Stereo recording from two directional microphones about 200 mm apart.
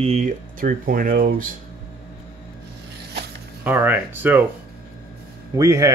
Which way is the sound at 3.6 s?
10° right (ahead or behind).